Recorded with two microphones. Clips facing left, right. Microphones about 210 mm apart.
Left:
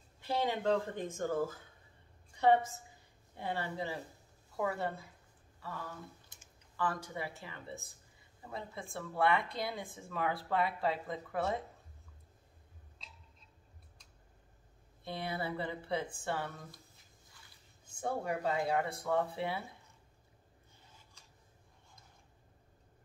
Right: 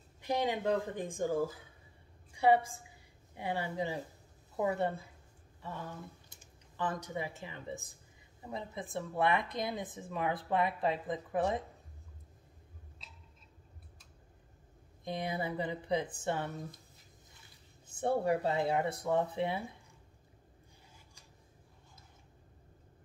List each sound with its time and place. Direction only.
0.2 s a woman's voice: 15° right (ahead or behind)
15.0 s speech: 15° right (ahead or behind)
18.0 s speech: 30° right (ahead or behind)